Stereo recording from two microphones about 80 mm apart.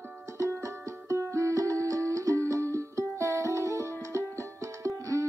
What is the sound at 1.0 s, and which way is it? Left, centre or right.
Music, right.